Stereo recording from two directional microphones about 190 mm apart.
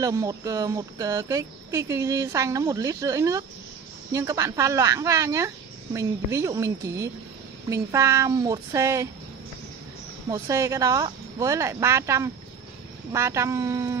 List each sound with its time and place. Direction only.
0.0 s speech: 15° right (ahead or behind)
10.3 s speech: 15° right (ahead or behind)